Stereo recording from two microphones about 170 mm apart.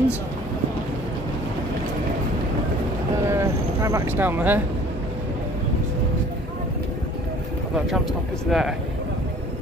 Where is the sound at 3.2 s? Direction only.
15° right (ahead or behind).